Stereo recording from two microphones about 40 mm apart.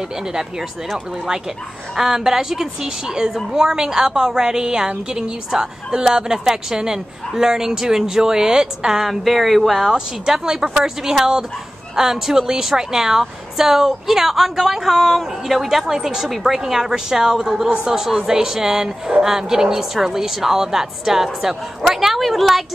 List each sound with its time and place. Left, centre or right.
0.3 s a woman's voice: centre
9.9 s a woman's voice: centre